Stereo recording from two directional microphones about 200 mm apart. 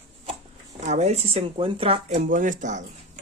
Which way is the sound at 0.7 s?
35° right (ahead or behind).